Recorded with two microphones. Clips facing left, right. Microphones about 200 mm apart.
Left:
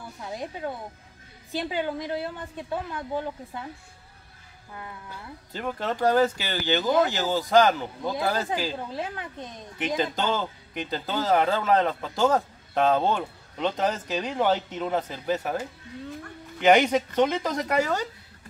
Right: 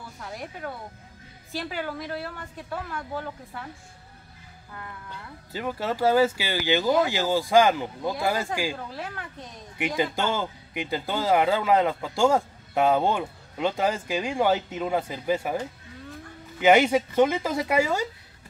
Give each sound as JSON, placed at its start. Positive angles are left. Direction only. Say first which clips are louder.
{"t": 0.2, "sound": "a woman's voice", "louder": "left 3 dB", "side_deg": 20}
{"t": 5.5, "sound": "speech", "louder": "right 1 dB", "side_deg": -5}
{"t": 8.7, "sound": "a woman's voice", "louder": "left 3 dB", "side_deg": 20}
{"t": 9.8, "sound": "speech", "louder": "right 1 dB", "side_deg": -10}